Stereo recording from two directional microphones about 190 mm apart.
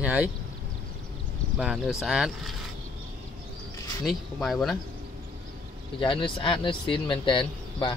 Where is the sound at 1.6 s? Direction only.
Centre (ahead or behind).